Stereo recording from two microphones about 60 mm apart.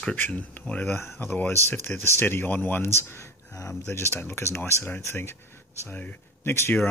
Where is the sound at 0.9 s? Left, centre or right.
Left.